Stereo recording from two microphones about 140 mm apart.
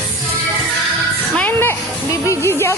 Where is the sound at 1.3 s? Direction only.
15° left (ahead or behind).